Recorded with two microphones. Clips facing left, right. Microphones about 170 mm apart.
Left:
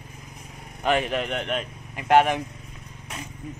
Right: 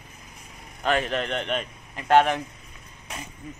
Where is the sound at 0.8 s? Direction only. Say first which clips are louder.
Left 1 dB; 15° left (ahead or behind).